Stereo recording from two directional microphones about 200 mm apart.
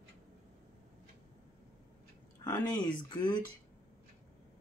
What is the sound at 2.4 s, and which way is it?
Speech, 20° left (ahead or behind).